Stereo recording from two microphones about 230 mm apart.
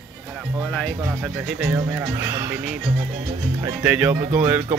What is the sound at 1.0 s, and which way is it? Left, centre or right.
Speech, centre.